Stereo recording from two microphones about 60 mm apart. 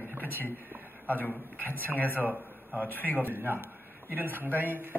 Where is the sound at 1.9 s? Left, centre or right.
Left.